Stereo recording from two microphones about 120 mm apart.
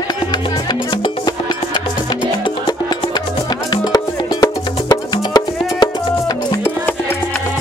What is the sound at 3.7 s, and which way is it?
Music, 35° left (ahead or behind).